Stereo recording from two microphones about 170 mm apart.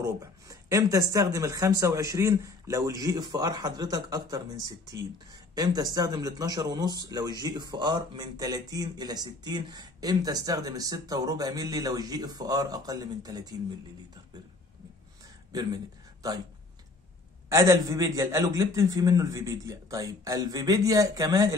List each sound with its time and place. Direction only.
0.0 s speech: 20° right (ahead or behind)
15.5 s a sound: 25° right (ahead or behind)
17.5 s speech: 20° right (ahead or behind)